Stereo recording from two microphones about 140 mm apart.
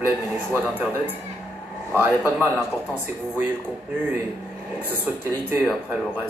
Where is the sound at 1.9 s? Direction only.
15° right (ahead or behind).